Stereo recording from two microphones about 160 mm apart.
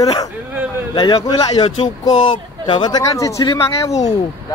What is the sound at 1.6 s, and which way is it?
Speech, 35° left (ahead or behind).